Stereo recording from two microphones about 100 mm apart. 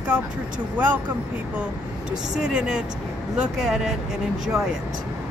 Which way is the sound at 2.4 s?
10° right (ahead or behind).